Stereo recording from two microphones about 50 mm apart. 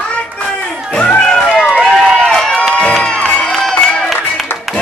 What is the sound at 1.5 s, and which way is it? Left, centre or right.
Run, centre.